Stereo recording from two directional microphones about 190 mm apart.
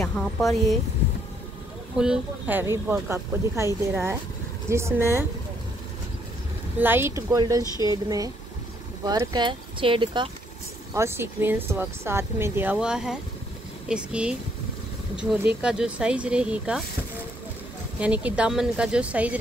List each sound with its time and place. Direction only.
0.0 s speech: centre (ahead or behind)
2.0 s speech: 5° right (ahead or behind)
6.8 s speech: 10° right (ahead or behind)
7.6 s speech: 20° left (ahead or behind)
9.0 s speech: 20° right (ahead or behind)
10.9 s speech: 15° right (ahead or behind)
17.9 s speech: 5° right (ahead or behind)